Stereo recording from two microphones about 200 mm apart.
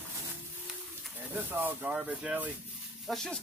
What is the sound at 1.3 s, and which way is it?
Speech, 10° right (ahead or behind).